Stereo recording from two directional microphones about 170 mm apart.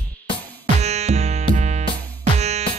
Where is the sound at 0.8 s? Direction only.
40° right (ahead or behind).